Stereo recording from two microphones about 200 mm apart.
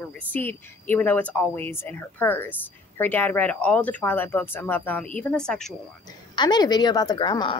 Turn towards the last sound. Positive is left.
turn(degrees=25)  # may be behind; listen again after turning